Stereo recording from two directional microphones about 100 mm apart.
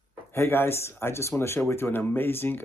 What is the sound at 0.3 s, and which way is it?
Speech, 25° left (ahead or behind).